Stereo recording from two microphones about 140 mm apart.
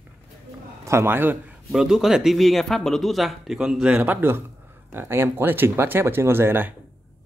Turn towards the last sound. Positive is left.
turn(degrees=-15)  # may be behind; listen again after turning